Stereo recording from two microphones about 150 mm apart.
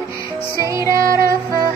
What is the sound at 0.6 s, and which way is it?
Music, 20° right (ahead or behind).